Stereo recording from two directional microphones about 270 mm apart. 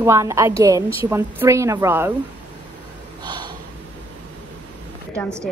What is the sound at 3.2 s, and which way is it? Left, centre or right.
Snort, centre.